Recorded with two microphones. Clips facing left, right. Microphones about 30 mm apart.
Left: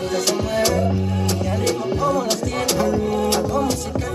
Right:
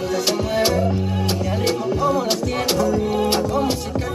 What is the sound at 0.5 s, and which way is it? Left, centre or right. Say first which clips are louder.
Music: right 1 dB; centre.